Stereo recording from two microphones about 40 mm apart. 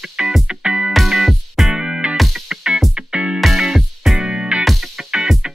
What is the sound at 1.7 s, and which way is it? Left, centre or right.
Music, centre.